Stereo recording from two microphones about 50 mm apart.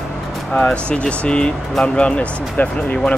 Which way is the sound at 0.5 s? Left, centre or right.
Left.